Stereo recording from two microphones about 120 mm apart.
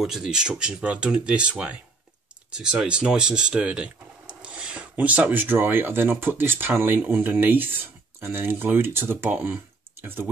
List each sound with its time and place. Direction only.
0.0 s speech: 5° right (ahead or behind)